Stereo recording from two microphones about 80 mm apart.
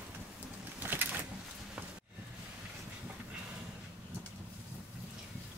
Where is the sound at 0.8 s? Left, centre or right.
Right.